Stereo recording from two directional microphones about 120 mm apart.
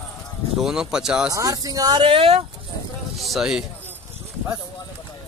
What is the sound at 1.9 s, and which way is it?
Speech, 50° right (ahead or behind).